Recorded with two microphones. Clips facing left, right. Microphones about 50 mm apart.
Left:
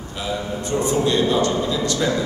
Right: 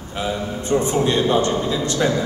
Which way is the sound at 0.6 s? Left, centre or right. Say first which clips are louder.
Right 2 dB; right.